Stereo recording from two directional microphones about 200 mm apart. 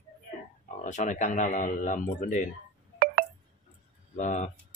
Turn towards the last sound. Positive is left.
turn(degrees=35)  # may be behind; listen again after turning